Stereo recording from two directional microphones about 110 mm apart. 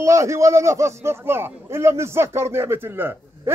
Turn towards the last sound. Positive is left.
turn(degrees=-20)  # may be behind; listen again after turning